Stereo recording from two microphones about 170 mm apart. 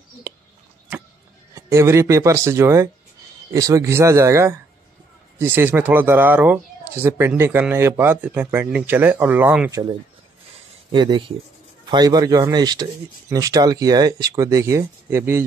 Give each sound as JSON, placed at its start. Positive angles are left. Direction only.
{"t": 1.5, "sound": "speech", "side_deg": -15}